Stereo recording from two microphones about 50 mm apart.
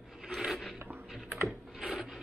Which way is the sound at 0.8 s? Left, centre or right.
Right.